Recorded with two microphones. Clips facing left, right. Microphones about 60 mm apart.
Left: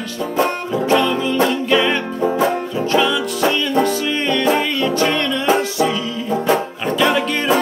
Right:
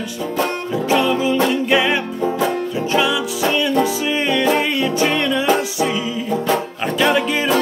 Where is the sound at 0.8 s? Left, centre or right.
Centre.